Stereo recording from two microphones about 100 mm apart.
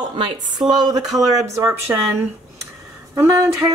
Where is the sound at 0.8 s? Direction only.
40° right (ahead or behind).